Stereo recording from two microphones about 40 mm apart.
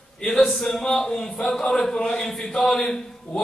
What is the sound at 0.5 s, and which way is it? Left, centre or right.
A man's voice, centre.